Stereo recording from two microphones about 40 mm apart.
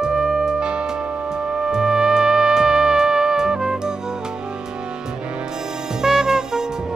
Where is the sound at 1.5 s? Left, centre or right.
Centre.